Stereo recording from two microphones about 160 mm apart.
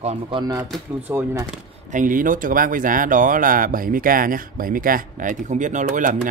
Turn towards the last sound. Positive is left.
turn(degrees=-50)  # may be behind; listen again after turning